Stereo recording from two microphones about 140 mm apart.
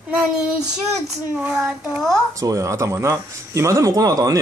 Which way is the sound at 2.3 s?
25° right (ahead or behind).